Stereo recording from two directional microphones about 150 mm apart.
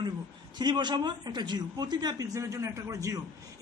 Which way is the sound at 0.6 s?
30° right (ahead or behind).